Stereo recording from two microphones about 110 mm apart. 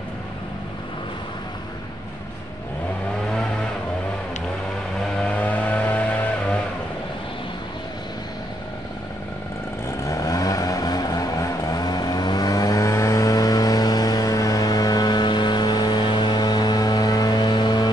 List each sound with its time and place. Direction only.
5.0 s vehicle: 10° left (ahead or behind)
9.8 s vehicle: 30° left (ahead or behind)